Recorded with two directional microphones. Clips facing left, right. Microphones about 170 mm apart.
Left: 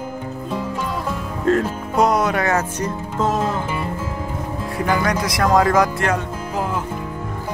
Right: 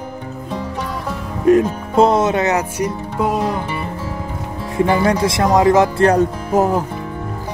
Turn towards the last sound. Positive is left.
turn(degrees=-40)  # may be behind; listen again after turning